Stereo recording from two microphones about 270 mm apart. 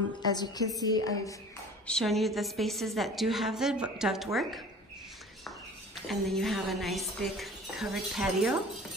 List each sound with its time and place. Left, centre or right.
0.3 s a woman's voice: centre
1.9 s a woman's voice: centre
5.9 s a woman's voice: centre